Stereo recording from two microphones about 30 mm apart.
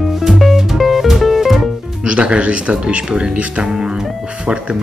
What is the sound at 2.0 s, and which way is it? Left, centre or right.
Speech, right.